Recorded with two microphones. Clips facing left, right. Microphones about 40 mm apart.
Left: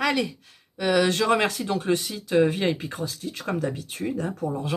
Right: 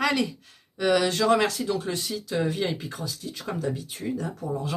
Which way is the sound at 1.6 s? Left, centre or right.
Left.